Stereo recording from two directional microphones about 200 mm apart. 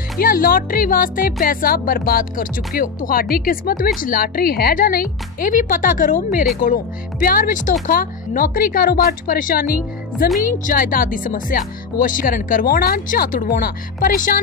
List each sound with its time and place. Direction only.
0.2 s a woman's voice: 45° left (ahead or behind)